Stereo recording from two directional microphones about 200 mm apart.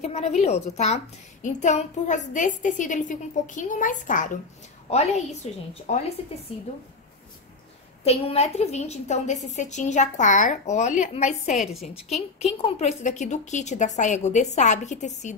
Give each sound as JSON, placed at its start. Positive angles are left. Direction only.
{"t": 0.0, "sound": "a child's voice", "side_deg": 35}
{"t": 8.0, "sound": "a child's voice", "side_deg": 30}